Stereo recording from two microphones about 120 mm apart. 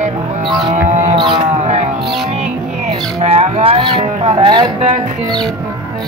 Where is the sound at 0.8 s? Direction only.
80° right.